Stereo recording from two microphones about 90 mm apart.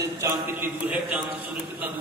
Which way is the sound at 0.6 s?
15° right (ahead or behind).